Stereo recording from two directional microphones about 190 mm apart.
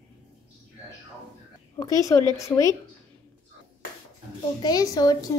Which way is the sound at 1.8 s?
15° left (ahead or behind).